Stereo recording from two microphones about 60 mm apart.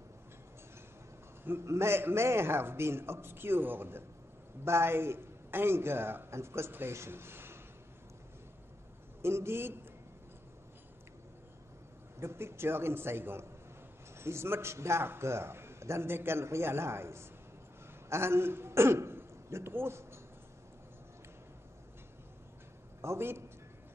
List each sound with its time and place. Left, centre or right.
1.4 s a man's voice: right
9.2 s a man's voice: right
12.2 s a man's voice: right
23.0 s a man's voice: right